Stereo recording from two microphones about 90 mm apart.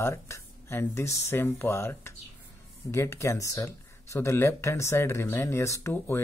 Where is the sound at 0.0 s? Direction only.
30° left (ahead or behind).